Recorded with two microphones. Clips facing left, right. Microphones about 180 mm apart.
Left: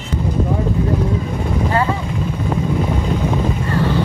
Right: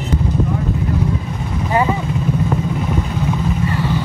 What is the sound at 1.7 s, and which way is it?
Vehicle, 15° right (ahead or behind).